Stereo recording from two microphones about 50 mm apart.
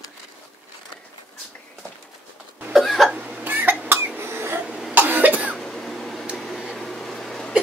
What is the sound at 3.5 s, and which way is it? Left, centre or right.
Cough, right.